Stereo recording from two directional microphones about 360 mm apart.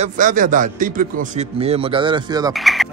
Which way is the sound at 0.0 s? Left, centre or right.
Right.